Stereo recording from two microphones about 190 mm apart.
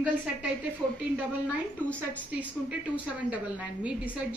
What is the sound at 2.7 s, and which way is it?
A woman's voice, 5° right (ahead or behind).